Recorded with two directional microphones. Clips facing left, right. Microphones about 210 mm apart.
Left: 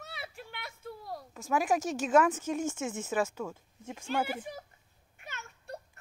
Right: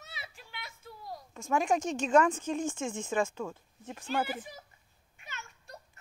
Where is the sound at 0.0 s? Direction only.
60° left (ahead or behind).